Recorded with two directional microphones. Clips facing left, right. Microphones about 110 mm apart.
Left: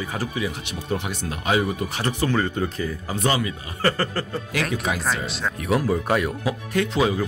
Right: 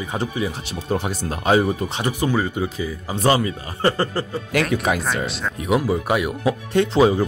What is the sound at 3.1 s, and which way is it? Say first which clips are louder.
Speech: right 5 dB; 35° right (ahead or behind).